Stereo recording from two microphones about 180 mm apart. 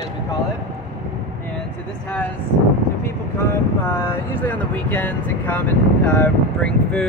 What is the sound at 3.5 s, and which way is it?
Speech, 15° left (ahead or behind).